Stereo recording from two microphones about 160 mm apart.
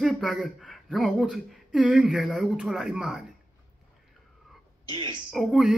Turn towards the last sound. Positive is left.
turn(degrees=0)  # may be behind; listen again after turning